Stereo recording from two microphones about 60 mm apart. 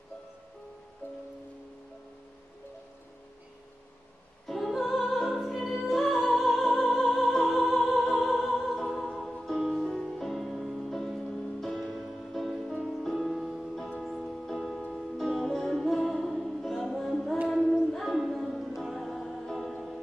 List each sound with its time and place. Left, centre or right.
1.0 s music: left
4.5 s music: centre
9.3 s music: centre
17.5 s child singing: centre
17.9 s music: centre